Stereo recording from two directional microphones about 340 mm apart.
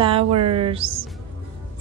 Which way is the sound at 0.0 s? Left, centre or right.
Centre.